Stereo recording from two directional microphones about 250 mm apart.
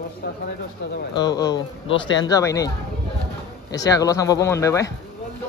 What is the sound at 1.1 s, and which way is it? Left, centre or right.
Speech, centre.